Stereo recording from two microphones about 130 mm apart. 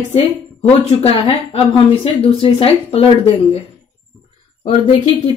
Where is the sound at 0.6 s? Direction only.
50° left (ahead or behind).